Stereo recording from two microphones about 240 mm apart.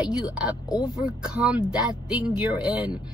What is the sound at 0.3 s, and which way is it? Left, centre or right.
A woman's voice, centre.